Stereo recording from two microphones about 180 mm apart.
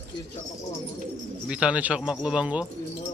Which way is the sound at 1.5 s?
5° right (ahead or behind).